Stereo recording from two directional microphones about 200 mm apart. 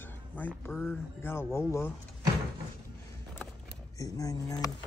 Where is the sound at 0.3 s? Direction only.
10° left (ahead or behind).